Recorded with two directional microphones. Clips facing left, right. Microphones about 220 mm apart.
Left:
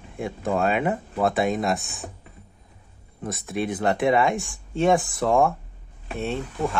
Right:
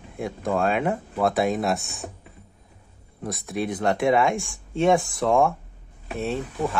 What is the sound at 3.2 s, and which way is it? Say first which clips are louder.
Speech: even; centre (ahead or behind).